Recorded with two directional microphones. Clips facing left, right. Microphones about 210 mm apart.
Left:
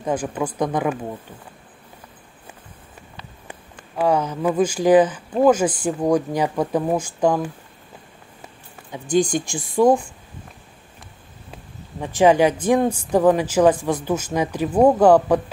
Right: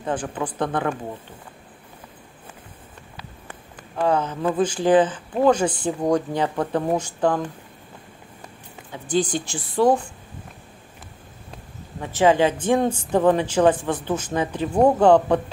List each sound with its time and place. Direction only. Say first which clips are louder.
0.0 s speech: left 3 dB; 10° left (ahead or behind)
3.4 s speech: left 1 dB; 10° left (ahead or behind)
8.9 s speech: left 3 dB; 15° left (ahead or behind)
12.0 s speech: left 2 dB; 15° left (ahead or behind)